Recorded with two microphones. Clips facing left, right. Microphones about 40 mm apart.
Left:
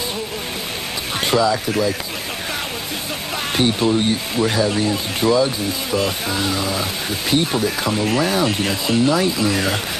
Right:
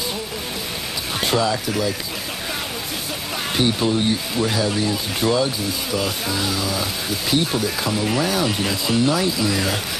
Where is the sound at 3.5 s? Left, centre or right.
Centre.